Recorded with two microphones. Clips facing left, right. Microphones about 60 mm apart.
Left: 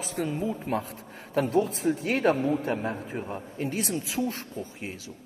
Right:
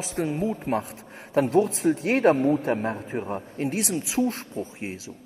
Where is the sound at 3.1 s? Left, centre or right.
Right.